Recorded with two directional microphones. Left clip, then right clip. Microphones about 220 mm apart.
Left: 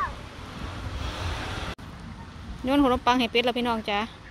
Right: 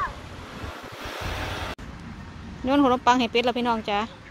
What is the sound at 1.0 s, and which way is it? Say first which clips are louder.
Vehicle: right 2 dB; 45° right (ahead or behind).